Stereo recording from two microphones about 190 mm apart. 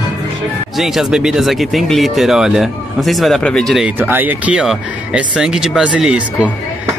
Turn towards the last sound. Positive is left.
turn(degrees=-5)  # may be behind; listen again after turning